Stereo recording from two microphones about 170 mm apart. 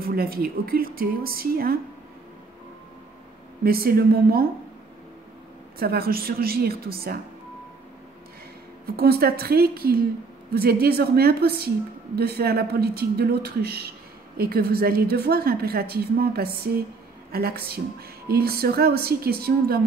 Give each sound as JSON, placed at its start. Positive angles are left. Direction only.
{"t": 0.0, "sound": "a woman's voice", "side_deg": -60}
{"t": 3.6, "sound": "a woman's voice", "side_deg": -60}
{"t": 5.8, "sound": "a woman's voice", "side_deg": -65}
{"t": 8.9, "sound": "a woman's voice", "side_deg": -65}